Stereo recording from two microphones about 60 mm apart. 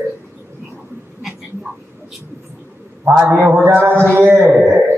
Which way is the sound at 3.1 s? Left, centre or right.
Right.